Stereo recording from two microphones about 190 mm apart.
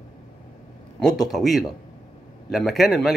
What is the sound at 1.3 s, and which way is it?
Speech, centre (ahead or behind).